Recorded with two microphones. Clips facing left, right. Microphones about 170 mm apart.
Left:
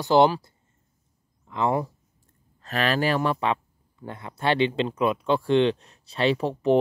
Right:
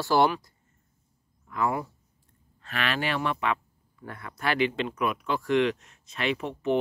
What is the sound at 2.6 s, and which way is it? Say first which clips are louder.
Speech: left 6 dB; 40° left (ahead or behind).